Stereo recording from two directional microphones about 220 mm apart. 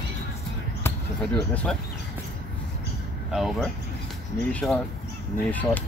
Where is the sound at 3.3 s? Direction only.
Centre (ahead or behind).